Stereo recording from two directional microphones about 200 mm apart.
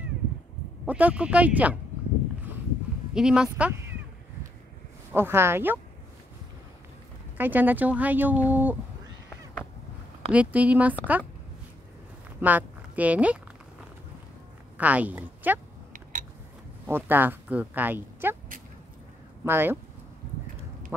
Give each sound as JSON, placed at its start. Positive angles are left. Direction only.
{"t": 0.8, "sound": "speech", "side_deg": -5}
{"t": 3.2, "sound": "speech", "side_deg": -5}
{"t": 5.1, "sound": "speech", "side_deg": -10}
{"t": 7.3, "sound": "speech", "side_deg": -10}
{"t": 10.3, "sound": "speech", "side_deg": -5}
{"t": 12.4, "sound": "speech", "side_deg": -10}
{"t": 14.8, "sound": "a woman's voice", "side_deg": -5}
{"t": 15.9, "sound": "a sound", "side_deg": -40}
{"t": 16.8, "sound": "speech", "side_deg": -10}
{"t": 19.4, "sound": "speech", "side_deg": -10}